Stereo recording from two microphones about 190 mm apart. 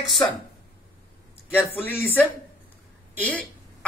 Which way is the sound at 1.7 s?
10° left (ahead or behind).